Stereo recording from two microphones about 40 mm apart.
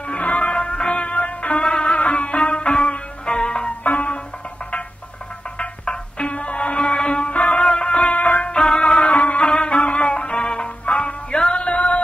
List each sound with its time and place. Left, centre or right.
0.1 s music: left
1.6 s music: left
3.8 s music: left
5.6 s music: left
6.3 s music: left
6.9 s music: left
8.8 s music: left